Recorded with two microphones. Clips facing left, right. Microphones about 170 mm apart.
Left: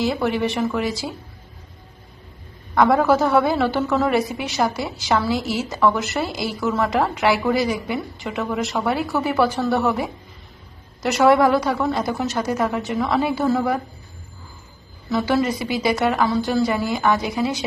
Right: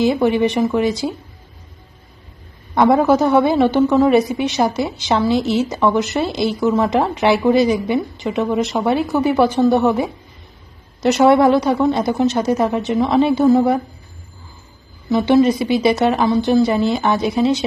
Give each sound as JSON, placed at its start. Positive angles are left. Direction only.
{"t": 0.0, "sound": "a woman's voice", "side_deg": -20}
{"t": 2.7, "sound": "a woman's voice", "side_deg": -25}
{"t": 15.0, "sound": "a woman's voice", "side_deg": -20}